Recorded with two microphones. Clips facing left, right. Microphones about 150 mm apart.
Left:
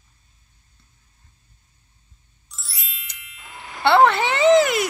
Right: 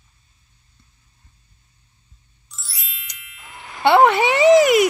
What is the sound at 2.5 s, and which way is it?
Ding, centre (ahead or behind).